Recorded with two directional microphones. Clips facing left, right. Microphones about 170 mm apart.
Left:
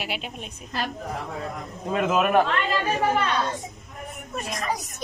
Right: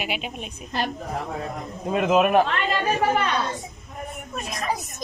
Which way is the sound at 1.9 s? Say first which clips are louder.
Right 3 dB; 15° right (ahead or behind).